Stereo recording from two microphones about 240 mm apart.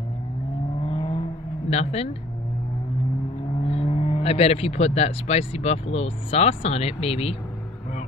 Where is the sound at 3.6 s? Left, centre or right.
Left.